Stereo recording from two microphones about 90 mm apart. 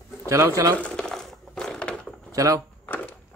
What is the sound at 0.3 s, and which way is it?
Speech, 35° right (ahead or behind).